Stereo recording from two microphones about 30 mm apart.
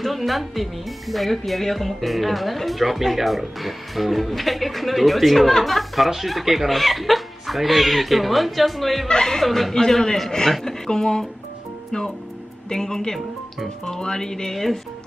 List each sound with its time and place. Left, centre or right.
0.0 s speech: centre
9.0 s speech: centre
9.4 s speech: centre
9.8 s speech: centre
12.6 s speech: centre